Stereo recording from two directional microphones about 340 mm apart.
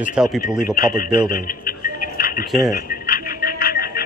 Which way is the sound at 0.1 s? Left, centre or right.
Centre.